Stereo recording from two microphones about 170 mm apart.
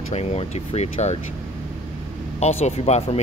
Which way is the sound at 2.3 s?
40° left (ahead or behind).